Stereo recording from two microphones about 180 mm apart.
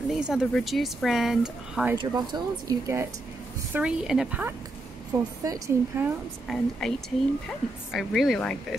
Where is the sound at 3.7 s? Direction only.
5° right (ahead or behind).